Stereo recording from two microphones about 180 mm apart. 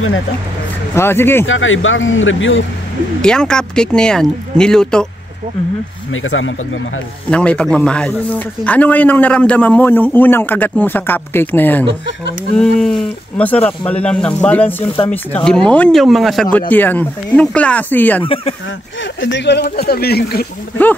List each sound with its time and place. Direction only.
0.9 s a man's voice: 15° left (ahead or behind)
1.4 s speech: 90° left
3.2 s speech: 5° left (ahead or behind)
7.2 s a man's voice: 5° left (ahead or behind)
18.2 s speech: 30° left (ahead or behind)
19.2 s speech: 80° left
19.9 s speech: 60° left (ahead or behind)